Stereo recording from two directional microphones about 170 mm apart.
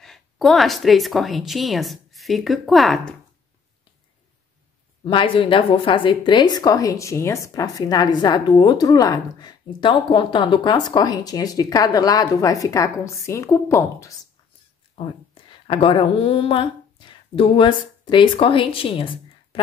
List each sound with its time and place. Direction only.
0.0 s speech: centre (ahead or behind)
5.0 s a woman's voice: 30° left (ahead or behind)
15.0 s speech: 30° left (ahead or behind)